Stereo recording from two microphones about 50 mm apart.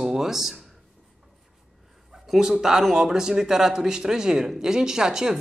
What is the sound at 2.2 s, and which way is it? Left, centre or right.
Speech, centre.